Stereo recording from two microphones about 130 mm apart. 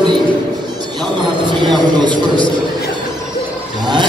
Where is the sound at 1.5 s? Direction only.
35° right (ahead or behind).